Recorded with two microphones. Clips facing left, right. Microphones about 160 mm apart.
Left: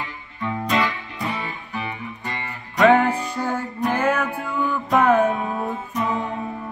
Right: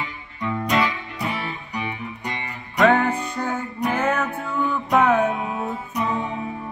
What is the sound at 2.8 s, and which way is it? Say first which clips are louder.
Music: left 2 dB; 10° left (ahead or behind).